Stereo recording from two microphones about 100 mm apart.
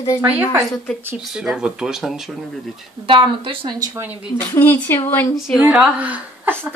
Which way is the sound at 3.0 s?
60° right (ahead or behind).